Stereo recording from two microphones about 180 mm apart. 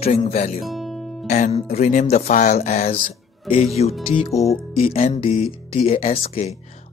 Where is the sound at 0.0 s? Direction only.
35° left (ahead or behind).